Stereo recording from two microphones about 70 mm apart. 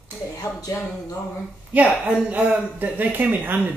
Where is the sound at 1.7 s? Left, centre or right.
Right.